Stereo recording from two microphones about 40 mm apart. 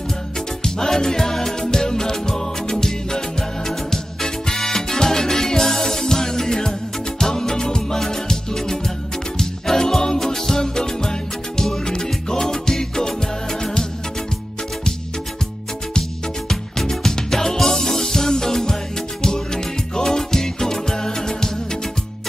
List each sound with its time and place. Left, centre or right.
0.7 s music: centre
15.9 s music: centre